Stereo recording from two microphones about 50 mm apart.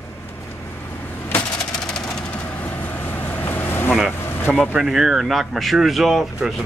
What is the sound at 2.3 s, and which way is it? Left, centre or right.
Vehicle, left.